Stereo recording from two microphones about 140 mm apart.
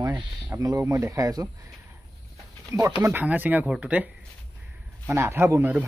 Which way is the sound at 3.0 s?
15° right (ahead or behind).